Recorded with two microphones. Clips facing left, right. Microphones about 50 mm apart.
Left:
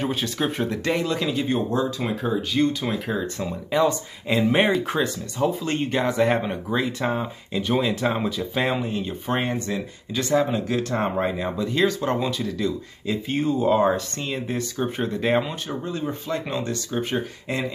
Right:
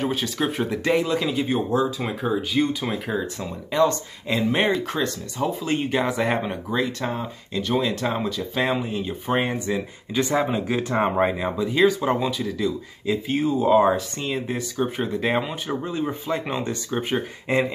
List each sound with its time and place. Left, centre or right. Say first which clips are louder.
0.0 s speech: right 1 dB; centre
15.7 s speech: right 3 dB; centre